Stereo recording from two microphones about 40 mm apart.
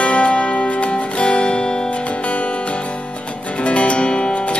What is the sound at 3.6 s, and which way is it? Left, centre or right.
Music, left.